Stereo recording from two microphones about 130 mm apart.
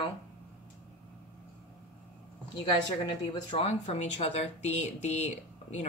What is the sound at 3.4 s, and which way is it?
Speech, 50° left (ahead or behind).